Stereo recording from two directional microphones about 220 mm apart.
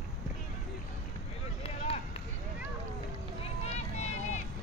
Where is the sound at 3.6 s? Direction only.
30° left (ahead or behind).